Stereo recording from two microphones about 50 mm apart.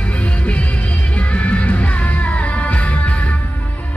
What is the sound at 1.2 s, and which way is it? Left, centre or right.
Music, left.